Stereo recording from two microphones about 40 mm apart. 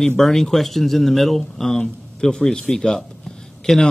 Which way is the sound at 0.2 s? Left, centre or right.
Centre.